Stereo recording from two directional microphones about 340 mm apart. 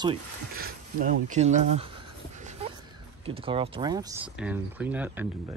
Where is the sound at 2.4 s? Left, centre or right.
Right.